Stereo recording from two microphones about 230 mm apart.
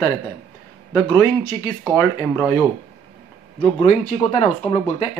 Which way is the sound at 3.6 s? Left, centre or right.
Left.